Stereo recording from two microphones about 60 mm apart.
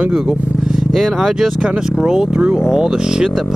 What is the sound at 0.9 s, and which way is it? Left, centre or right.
Speech, centre.